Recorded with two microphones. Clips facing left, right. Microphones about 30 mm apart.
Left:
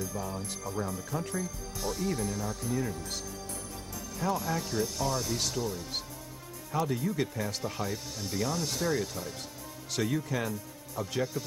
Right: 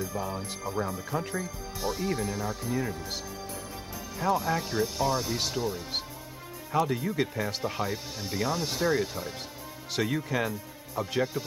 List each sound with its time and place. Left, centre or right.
0.0 s speech: right
4.2 s speech: centre